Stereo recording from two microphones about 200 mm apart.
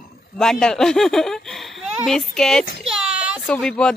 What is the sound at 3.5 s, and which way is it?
Speech, 5° left (ahead or behind).